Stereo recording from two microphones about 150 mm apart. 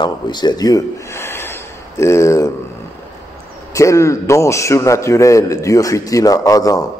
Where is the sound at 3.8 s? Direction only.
20° left (ahead or behind).